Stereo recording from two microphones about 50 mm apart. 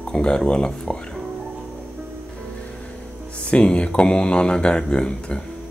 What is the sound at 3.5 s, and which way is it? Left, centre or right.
Speech, left.